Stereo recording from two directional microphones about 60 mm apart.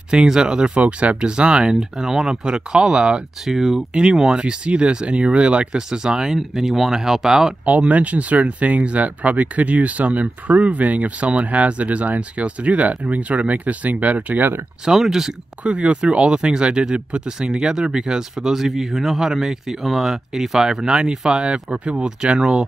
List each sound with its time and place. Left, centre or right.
0.1 s speech: centre
7.6 s speech: right
14.9 s speech: centre
15.6 s speech: centre